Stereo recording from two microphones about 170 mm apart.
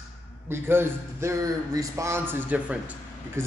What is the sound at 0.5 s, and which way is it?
A man's voice, 15° right (ahead or behind).